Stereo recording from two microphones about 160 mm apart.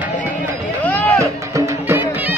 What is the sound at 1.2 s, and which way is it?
Music, 20° right (ahead or behind).